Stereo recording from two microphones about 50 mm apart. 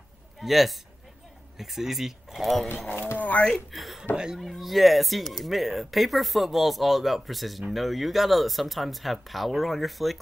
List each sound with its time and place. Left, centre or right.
0.4 s a man's voice: centre
3.2 s a sound: left
3.7 s speech: centre